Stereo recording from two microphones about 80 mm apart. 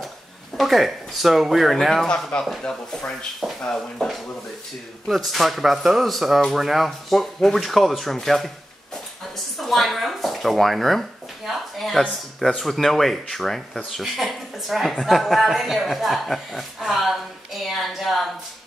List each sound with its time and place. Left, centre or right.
0.6 s speech: centre
9.6 s speech: centre